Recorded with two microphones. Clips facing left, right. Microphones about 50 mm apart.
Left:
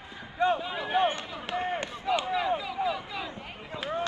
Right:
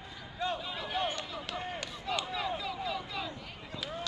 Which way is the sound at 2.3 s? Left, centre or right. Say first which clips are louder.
Left 7 dB; centre.